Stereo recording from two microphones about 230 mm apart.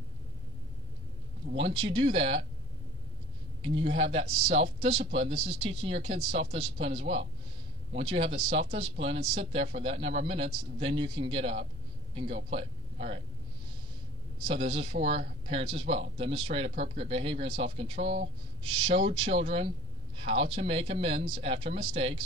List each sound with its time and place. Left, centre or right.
1.6 s speech: right
3.6 s speech: right
14.5 s speech: right